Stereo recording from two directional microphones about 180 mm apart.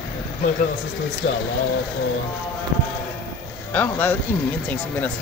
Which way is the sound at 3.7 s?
10° left (ahead or behind).